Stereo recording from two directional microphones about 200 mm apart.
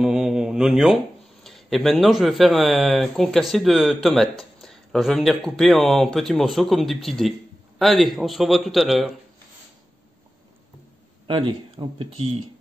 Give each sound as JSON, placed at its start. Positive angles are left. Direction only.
{"t": 0.0, "sound": "mantra", "side_deg": -5}
{"t": 1.4, "sound": "speech", "side_deg": 0}
{"t": 11.2, "sound": "speech", "side_deg": -25}